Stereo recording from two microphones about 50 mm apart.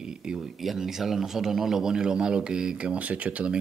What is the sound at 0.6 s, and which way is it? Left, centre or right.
Speech, centre.